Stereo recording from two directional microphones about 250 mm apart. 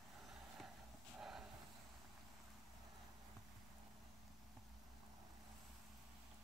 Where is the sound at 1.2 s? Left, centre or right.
Centre.